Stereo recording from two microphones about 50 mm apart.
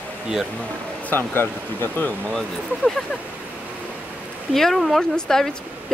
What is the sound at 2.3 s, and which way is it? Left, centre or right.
Speech, centre.